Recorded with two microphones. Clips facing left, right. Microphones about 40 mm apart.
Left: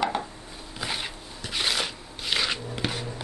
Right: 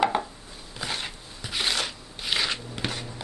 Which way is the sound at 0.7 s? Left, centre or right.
Centre.